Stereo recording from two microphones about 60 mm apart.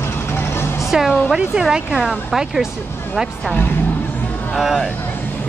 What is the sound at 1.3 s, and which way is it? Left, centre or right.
Speech, centre.